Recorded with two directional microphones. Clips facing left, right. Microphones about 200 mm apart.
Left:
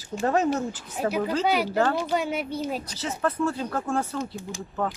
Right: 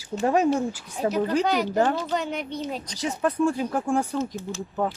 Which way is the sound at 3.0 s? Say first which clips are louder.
Right 4 dB; 15° right (ahead or behind).